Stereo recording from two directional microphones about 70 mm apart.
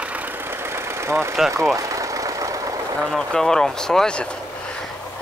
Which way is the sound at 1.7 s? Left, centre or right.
Right.